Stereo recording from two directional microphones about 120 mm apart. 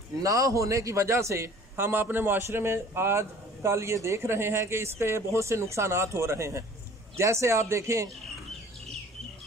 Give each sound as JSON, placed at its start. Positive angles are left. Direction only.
{"t": 0.2, "sound": "a man's voice", "side_deg": -25}